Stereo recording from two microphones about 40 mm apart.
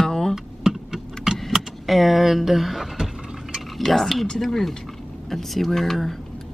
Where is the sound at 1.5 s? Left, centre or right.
Centre.